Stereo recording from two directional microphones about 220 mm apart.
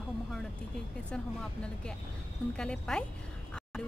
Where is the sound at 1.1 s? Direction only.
5° left (ahead or behind).